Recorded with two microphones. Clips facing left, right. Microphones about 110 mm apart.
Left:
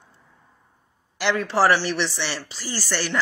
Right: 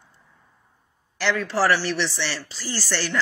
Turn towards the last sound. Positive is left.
turn(degrees=5)  # may be behind; listen again after turning